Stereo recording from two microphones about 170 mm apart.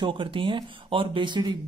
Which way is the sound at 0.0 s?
30° right (ahead or behind).